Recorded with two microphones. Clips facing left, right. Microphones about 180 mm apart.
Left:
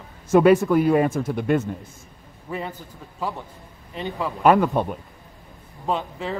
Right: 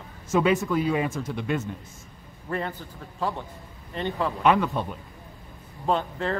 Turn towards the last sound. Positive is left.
turn(degrees=5)  # may be behind; listen again after turning